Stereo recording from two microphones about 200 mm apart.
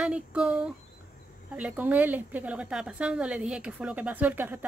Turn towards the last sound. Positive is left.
turn(degrees=-10)  # may be behind; listen again after turning